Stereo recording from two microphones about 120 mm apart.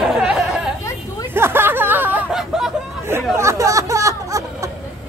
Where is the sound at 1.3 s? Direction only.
20° right (ahead or behind).